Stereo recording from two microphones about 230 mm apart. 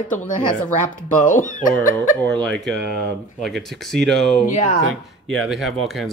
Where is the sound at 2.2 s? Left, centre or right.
Centre.